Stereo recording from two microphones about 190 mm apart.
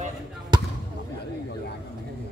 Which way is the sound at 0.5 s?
20° right (ahead or behind).